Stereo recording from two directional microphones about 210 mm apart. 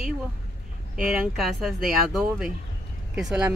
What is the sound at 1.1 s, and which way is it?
Speech, centre (ahead or behind).